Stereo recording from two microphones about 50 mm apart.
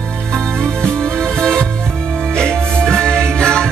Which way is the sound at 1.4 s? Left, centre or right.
Centre.